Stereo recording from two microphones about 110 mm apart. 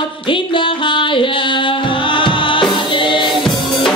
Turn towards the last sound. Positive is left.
turn(degrees=50)  # may be behind; listen again after turning